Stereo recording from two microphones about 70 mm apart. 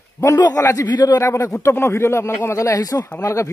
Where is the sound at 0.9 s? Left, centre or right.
Left.